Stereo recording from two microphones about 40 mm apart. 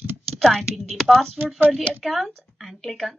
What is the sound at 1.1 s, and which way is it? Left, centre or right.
Speech, centre.